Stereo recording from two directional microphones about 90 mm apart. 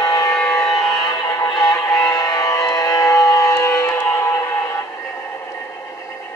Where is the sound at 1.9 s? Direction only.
30° left (ahead or behind).